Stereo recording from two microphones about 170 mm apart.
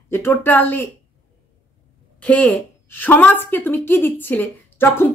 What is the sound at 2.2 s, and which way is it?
Speech, 10° left (ahead or behind).